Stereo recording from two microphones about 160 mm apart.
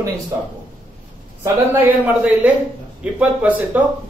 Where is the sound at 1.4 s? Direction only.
10° right (ahead or behind).